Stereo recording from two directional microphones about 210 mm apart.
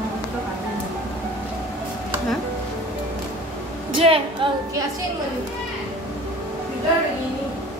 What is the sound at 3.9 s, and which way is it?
Speech, 25° right (ahead or behind).